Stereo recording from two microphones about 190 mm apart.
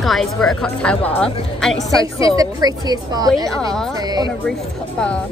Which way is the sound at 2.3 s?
20° right (ahead or behind).